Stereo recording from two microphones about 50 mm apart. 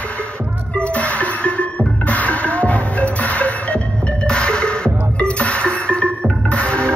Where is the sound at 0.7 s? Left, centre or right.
Left.